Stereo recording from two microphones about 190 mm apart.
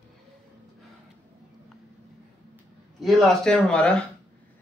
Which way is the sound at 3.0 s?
Centre (ahead or behind).